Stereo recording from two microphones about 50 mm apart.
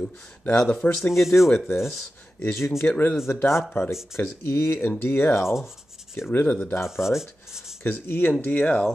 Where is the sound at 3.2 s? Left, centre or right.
Left.